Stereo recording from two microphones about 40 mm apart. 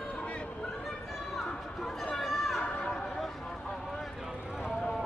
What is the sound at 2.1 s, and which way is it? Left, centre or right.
Chatter, centre.